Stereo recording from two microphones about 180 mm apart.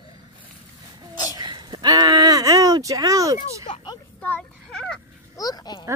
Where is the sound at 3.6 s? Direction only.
25° left (ahead or behind).